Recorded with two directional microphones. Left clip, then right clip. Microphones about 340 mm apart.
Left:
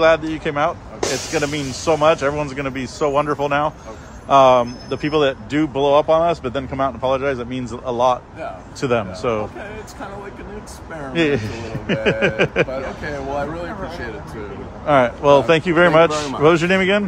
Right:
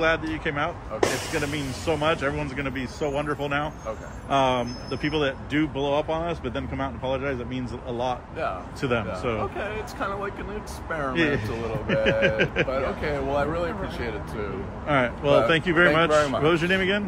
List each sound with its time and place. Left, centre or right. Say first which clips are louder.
0.0 s speech: left 8 dB; centre
9.6 s speech: right 2 dB; centre
11.1 s speech: left 7 dB; centre
11.9 s chuckle: left 4 dB; centre
12.6 s speech: even; centre
14.9 s speech: left 9 dB; centre